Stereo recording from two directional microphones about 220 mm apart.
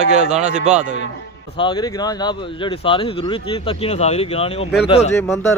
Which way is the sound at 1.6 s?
20° left (ahead or behind).